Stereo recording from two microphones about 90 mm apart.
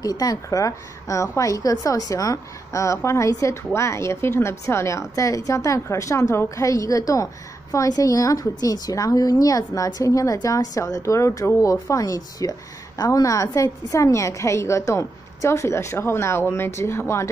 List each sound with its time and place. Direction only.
0.0 s a woman's voice: 45° left (ahead or behind)